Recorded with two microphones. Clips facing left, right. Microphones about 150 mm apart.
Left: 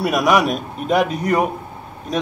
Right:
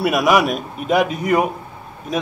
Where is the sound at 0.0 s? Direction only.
Centre (ahead or behind).